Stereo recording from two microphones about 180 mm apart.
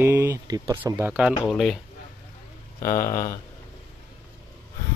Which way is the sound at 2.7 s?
15° left (ahead or behind).